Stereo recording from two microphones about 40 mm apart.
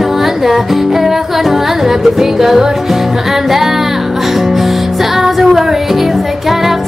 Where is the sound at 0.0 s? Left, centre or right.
Centre.